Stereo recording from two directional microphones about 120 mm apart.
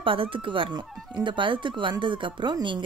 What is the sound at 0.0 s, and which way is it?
Speech, 45° right (ahead or behind).